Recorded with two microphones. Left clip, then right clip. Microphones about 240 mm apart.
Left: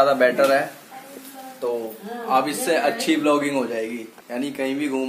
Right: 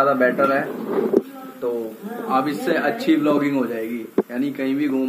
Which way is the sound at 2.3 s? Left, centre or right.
Centre.